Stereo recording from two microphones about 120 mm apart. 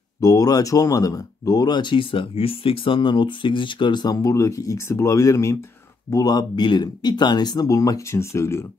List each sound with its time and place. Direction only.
0.2 s speech: 30° left (ahead or behind)